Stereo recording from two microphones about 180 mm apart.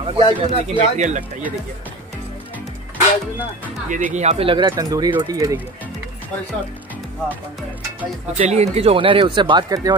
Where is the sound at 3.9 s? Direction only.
45° right (ahead or behind); by 5.6 s 20° right (ahead or behind).